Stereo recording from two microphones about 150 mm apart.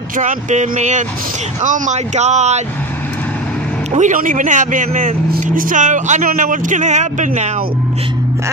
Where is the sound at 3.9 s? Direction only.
55° right (ahead or behind).